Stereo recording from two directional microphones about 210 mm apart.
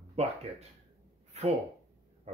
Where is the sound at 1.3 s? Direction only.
30° right (ahead or behind).